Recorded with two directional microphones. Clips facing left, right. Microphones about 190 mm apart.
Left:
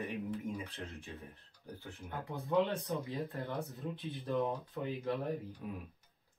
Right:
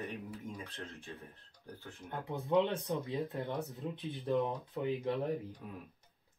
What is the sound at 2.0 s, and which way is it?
Speech, 15° right (ahead or behind).